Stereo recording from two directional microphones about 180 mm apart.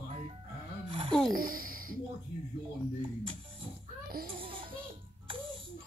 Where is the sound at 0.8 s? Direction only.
30° right (ahead or behind).